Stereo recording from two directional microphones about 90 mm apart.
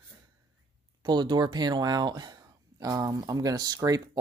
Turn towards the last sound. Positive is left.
turn(degrees=-40)  # may be behind; listen again after turning